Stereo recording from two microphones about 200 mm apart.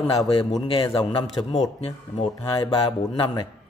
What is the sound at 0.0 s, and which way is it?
Speech, 25° left (ahead or behind).